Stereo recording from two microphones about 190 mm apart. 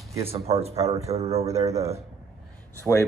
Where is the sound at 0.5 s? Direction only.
30° right (ahead or behind).